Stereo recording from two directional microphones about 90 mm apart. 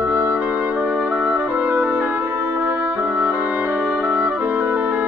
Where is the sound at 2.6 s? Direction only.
25° right (ahead or behind).